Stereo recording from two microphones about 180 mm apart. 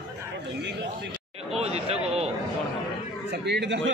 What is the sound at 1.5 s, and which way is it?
Chatter, 35° right (ahead or behind).